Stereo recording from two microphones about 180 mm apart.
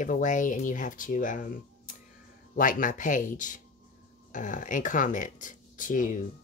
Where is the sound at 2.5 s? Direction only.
45° left (ahead or behind).